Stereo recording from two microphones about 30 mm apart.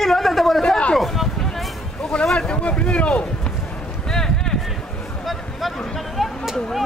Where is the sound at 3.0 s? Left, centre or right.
Left.